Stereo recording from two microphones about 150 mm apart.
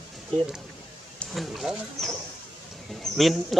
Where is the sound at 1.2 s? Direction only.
Centre (ahead or behind).